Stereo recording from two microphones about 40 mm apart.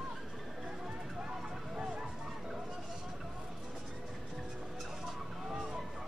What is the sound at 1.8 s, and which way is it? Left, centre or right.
Hubbub, right.